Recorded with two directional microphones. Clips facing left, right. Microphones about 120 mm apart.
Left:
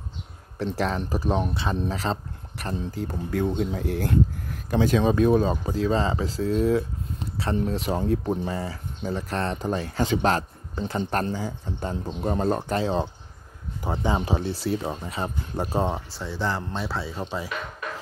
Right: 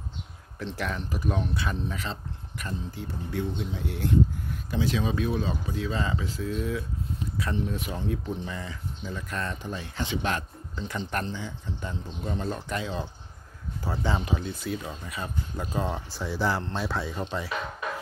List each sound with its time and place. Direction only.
0.7 s speech: 35° left (ahead or behind)
7.9 s speech: 40° left (ahead or behind)
9.7 s speech: 45° left (ahead or behind)
12.5 s speech: 35° left (ahead or behind)
13.8 s speech: 20° left (ahead or behind)
16.1 s speech: centre (ahead or behind)